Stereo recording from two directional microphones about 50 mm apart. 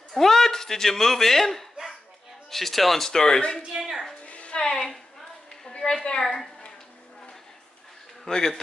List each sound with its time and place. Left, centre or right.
0.1 s speech: centre
3.7 s a woman's voice: centre
4.3 s music: left
5.7 s a woman's voice: centre
8.3 s speech: centre